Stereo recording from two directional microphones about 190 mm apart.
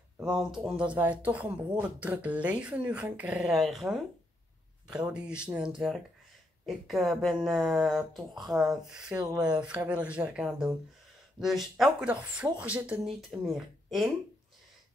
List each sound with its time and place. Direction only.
0.2 s speech: centre (ahead or behind)
9.1 s speech: 20° right (ahead or behind)
9.4 s speech: 5° right (ahead or behind)